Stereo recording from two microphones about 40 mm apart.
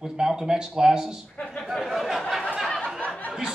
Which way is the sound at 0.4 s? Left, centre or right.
Centre.